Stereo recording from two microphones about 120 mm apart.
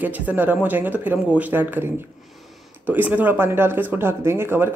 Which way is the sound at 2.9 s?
15° right (ahead or behind).